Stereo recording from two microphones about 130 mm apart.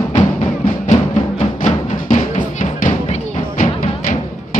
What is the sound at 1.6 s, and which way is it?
Music, 70° left (ahead or behind).